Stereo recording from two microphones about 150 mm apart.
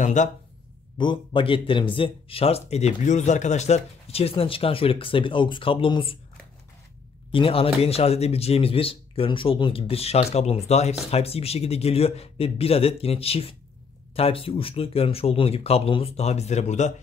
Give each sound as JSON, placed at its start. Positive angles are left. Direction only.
{"t": 0.0, "sound": "speech", "side_deg": 55}
{"t": 0.9, "sound": "speech", "side_deg": 35}
{"t": 7.2, "sound": "speech", "side_deg": 35}